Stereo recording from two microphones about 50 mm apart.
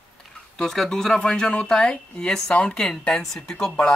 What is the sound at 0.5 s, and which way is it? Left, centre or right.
Speech, centre.